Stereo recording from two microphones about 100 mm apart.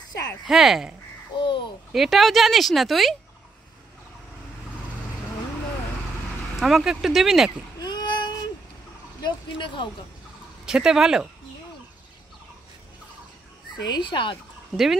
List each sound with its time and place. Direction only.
0.5 s speech: 5° right (ahead or behind)
1.4 s a sound: 55° left (ahead or behind)
1.9 s speech: centre (ahead or behind)
6.6 s speech: 5° right (ahead or behind)
7.8 s a sound: 45° left (ahead or behind)
9.2 s speech: 55° left (ahead or behind)
10.6 s speech: 5° right (ahead or behind)
13.7 s speech: 45° left (ahead or behind)